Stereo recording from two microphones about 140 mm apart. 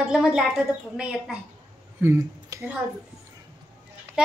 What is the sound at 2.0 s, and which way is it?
Speech, 20° right (ahead or behind).